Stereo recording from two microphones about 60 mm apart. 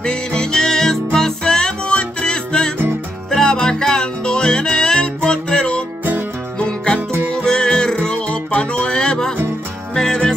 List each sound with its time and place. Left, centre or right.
0.0 s music: centre
7.0 s music: right
7.4 s music: centre